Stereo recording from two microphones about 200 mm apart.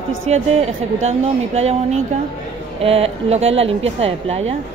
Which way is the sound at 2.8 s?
30° right (ahead or behind).